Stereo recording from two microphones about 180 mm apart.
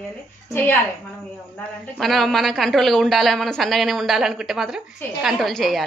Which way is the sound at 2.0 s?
Centre (ahead or behind).